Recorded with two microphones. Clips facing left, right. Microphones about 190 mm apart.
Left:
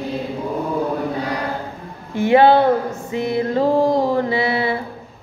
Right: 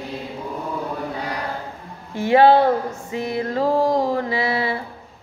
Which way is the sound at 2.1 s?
25° left (ahead or behind).